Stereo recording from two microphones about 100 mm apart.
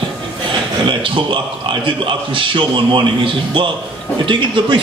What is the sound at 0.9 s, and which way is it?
A man's voice, 55° right (ahead or behind).